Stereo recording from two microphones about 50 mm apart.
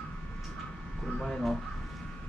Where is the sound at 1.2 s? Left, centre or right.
Centre.